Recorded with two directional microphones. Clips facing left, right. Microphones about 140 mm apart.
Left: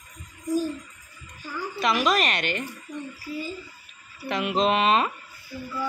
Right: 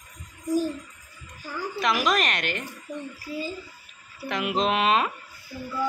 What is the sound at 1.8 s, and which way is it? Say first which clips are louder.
Speech: left 1 dB; centre (ahead or behind).